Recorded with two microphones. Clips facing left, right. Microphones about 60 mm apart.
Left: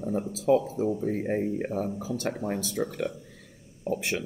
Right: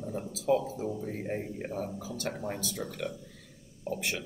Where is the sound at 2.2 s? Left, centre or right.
Left.